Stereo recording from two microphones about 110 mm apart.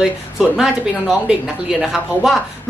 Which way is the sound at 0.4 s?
Centre (ahead or behind).